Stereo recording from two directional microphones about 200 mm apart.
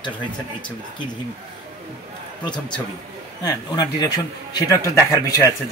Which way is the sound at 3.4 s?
20° left (ahead or behind).